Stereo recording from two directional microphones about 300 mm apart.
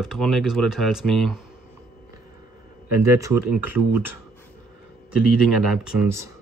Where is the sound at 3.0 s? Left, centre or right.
Centre.